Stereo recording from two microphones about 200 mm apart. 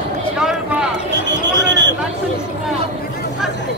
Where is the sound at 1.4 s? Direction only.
60° right (ahead or behind).